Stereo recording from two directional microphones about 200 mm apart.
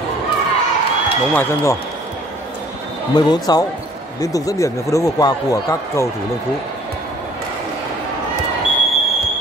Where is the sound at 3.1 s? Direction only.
20° left (ahead or behind).